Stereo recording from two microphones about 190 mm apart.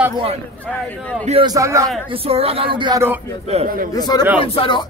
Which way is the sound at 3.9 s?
20° left (ahead or behind).